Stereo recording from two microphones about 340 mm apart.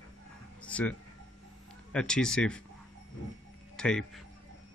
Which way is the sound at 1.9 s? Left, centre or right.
Centre.